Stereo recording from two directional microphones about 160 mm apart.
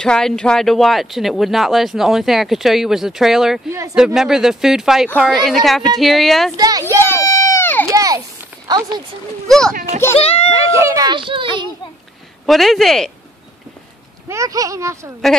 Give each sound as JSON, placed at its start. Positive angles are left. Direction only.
{"t": 0.0, "sound": "speech", "side_deg": 5}
{"t": 6.5, "sound": "a child's voice", "side_deg": -25}
{"t": 7.2, "sound": "a sound", "side_deg": 20}
{"t": 7.9, "sound": "a sound", "side_deg": -20}
{"t": 8.6, "sound": "speech", "side_deg": -25}
{"t": 9.5, "sound": "speech", "side_deg": 5}
{"t": 10.1, "sound": "a child's voice", "side_deg": 40}
{"t": 10.5, "sound": "a child's voice", "side_deg": -20}
{"t": 12.4, "sound": "speech", "side_deg": 0}
{"t": 14.3, "sound": "a child's voice", "side_deg": -20}